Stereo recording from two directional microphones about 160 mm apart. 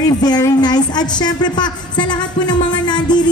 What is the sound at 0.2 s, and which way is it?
Speech, 25° left (ahead or behind).